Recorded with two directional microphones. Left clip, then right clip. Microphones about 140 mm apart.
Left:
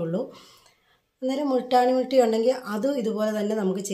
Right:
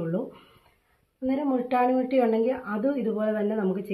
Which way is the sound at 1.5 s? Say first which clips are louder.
Left 4 dB; 25° left (ahead or behind).